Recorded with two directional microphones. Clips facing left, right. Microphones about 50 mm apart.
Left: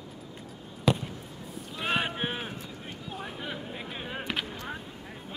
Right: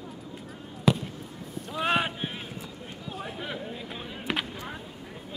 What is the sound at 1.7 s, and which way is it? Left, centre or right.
Run, centre.